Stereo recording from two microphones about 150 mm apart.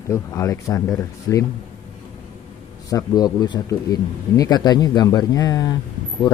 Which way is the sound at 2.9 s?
25° left (ahead or behind).